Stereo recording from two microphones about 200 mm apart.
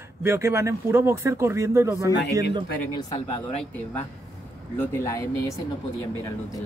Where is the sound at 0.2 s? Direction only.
15° right (ahead or behind).